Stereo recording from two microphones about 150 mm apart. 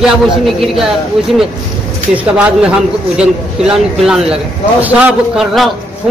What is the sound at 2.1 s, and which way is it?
A man's voice, 10° right (ahead or behind).